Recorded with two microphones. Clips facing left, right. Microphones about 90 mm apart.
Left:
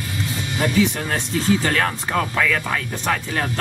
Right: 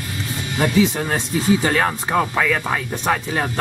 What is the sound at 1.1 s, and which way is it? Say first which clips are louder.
Speech: right 2 dB; 15° right (ahead or behind).